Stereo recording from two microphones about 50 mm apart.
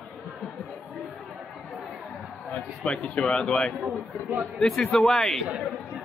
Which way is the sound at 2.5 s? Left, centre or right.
Left.